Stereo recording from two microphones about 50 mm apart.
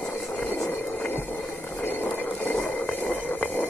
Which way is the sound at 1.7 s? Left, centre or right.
Left.